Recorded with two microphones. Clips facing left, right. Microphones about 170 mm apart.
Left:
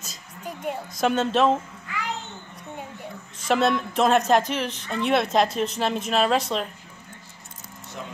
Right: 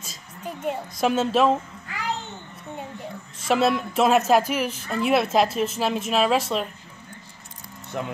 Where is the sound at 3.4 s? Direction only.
Centre (ahead or behind).